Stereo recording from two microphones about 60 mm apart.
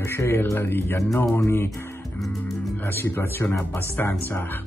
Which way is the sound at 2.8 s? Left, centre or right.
Left.